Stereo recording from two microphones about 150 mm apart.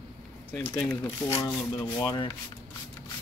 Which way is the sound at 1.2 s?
20° left (ahead or behind).